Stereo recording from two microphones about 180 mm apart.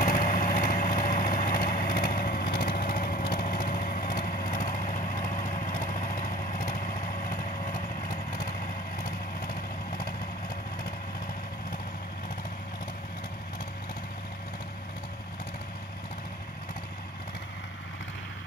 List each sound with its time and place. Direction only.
0.0 s vehicle: 50° left (ahead or behind)